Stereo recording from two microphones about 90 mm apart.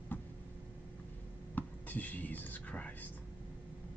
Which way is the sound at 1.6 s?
20° left (ahead or behind).